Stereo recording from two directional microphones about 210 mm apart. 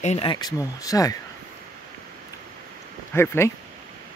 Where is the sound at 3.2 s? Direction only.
10° left (ahead or behind).